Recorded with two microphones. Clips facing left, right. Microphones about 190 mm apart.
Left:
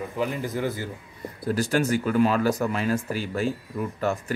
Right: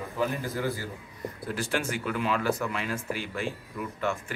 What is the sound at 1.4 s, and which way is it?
Speech, 40° left (ahead or behind).